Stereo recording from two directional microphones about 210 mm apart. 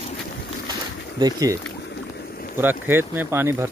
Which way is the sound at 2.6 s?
10° right (ahead or behind).